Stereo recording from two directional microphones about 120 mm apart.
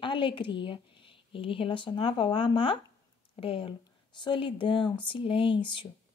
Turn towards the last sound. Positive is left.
turn(degrees=45)  # may be behind; listen again after turning